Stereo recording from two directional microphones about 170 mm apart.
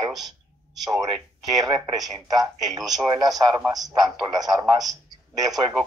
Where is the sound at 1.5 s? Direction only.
20° right (ahead or behind).